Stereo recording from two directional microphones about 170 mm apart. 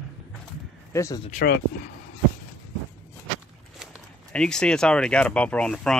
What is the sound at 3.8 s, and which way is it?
Speech, 5° left (ahead or behind).